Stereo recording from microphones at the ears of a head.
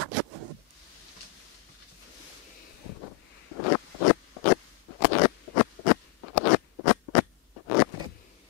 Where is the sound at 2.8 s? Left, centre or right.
Left.